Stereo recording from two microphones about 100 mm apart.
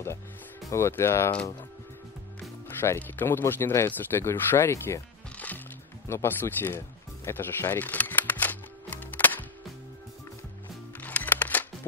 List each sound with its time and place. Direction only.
0.7 s speech: 25° left (ahead or behind)
2.8 s speech: 20° left (ahead or behind)
6.0 s speech: 25° left (ahead or behind)
7.2 s music: 20° left (ahead or behind)
11.0 s music: 15° left (ahead or behind)